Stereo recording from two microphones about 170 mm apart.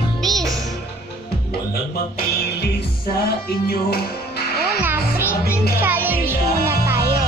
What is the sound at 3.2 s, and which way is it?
Music, 65° left (ahead or behind).